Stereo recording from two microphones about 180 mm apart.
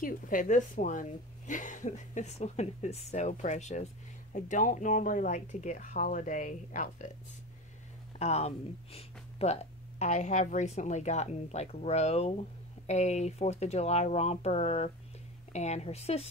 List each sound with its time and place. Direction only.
0.0 s a woman's voice: 50° left (ahead or behind)
8.2 s speech: 35° left (ahead or behind)